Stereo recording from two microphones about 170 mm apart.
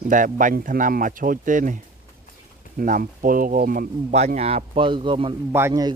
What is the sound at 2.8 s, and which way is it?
Speech, 55° right (ahead or behind).